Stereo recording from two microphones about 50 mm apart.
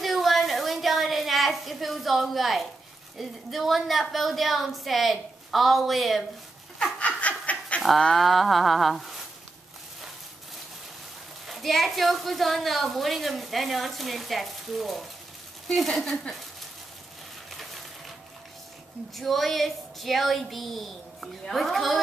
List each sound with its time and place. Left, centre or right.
0.0 s a sound: centre
3.2 s a woman's voice: centre
7.0 s snicker: left
8.2 s a woman's voice: centre
11.4 s a woman's voice: centre
19.1 s a woman's voice: centre